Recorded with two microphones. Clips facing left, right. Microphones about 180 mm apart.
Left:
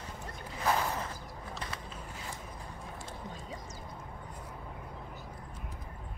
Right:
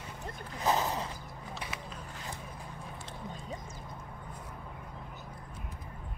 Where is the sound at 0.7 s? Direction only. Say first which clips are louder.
Right 1 dB; 20° right (ahead or behind).